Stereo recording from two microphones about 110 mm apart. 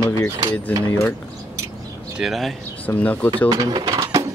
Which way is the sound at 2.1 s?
Centre (ahead or behind).